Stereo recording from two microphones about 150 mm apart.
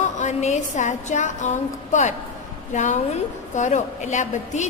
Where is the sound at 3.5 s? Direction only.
55° left (ahead or behind).